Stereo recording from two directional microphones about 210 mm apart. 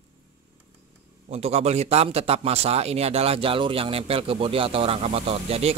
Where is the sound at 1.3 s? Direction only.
30° right (ahead or behind).